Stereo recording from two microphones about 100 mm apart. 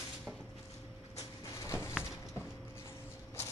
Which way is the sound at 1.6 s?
30° left (ahead or behind).